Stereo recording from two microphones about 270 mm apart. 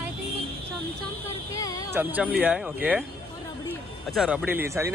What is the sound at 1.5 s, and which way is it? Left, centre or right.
Speech, centre.